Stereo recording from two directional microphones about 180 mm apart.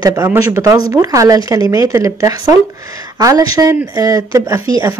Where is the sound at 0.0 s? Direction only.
15° right (ahead or behind).